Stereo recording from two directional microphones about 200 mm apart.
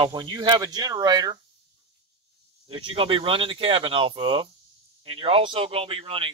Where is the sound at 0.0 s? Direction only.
25° right (ahead or behind).